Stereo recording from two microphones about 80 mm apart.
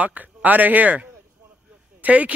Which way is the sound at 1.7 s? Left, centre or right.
Centre.